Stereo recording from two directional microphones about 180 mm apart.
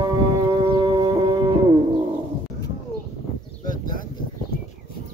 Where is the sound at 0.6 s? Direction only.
30° right (ahead or behind).